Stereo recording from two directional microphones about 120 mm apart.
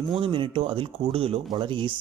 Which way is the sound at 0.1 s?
45° right (ahead or behind).